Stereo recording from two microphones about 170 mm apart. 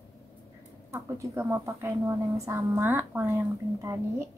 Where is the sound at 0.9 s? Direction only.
15° right (ahead or behind).